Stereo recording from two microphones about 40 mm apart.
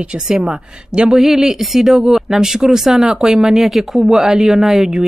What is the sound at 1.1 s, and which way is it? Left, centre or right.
Speech, centre.